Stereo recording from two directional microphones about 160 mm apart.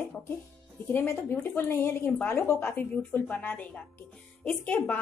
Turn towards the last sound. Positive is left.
turn(degrees=10)  # may be behind; listen again after turning